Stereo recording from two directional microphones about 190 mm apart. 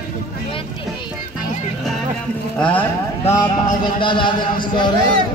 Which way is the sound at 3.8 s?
25° left (ahead or behind).